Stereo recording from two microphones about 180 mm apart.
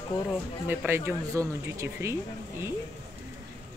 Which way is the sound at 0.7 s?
15° right (ahead or behind).